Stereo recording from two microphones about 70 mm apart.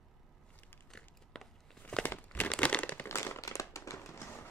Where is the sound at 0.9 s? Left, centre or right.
Centre.